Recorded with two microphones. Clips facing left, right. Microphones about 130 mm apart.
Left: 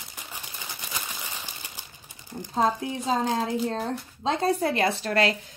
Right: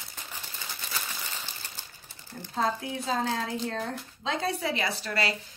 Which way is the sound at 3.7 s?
35° left (ahead or behind).